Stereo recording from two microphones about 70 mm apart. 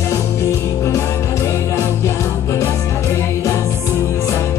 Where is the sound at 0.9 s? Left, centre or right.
Left.